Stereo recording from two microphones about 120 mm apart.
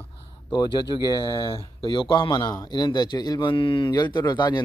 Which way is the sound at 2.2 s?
30° left (ahead or behind).